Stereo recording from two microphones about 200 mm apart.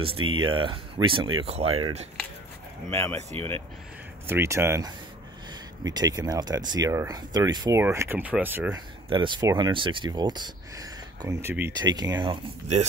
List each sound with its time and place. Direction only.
0.0 s speech: 25° right (ahead or behind)
2.9 s speech: 10° left (ahead or behind)
3.2 s speech: 35° right (ahead or behind)
4.3 s speech: 15° right (ahead or behind)
9.1 s speech: 25° right (ahead or behind)